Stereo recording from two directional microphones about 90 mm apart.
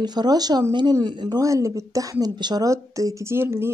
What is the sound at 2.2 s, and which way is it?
Speech, 50° right (ahead or behind).